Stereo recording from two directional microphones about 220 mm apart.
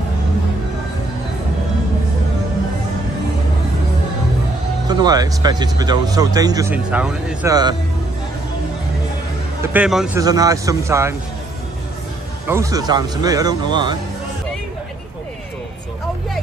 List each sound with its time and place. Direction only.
4.8 s speech: 20° right (ahead or behind)
7.4 s speech: 15° right (ahead or behind)
9.6 s speech: 5° right (ahead or behind)
10.1 s speech: 15° right (ahead or behind)
12.4 s speech: 15° right (ahead or behind)